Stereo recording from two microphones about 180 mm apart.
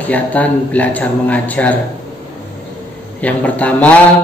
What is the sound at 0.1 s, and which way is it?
A man's voice, 10° left (ahead or behind).